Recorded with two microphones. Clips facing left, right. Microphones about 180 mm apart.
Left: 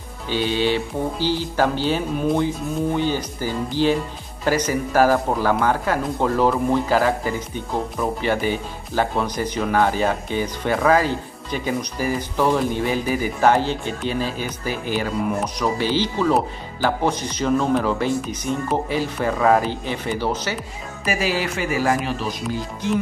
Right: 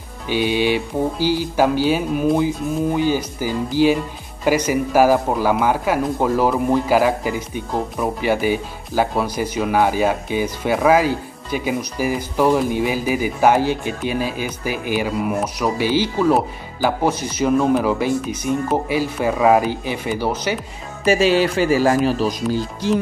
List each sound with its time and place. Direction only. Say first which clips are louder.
0.3 s speech: right 2 dB; 15° right (ahead or behind)
21.0 s speech: right 8 dB; 25° right (ahead or behind)